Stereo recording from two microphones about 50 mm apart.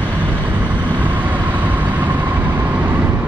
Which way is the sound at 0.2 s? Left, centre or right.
Right.